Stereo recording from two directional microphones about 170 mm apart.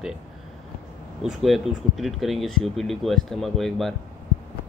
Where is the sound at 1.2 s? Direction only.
Centre (ahead or behind).